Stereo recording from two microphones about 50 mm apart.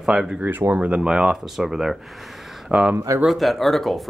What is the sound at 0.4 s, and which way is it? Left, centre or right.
Speech, right.